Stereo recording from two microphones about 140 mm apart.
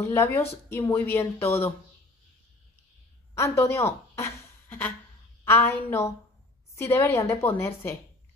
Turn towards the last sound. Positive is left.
turn(degrees=15)  # may be behind; listen again after turning